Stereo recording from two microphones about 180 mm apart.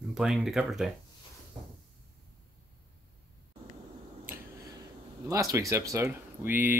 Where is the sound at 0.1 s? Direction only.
5° right (ahead or behind).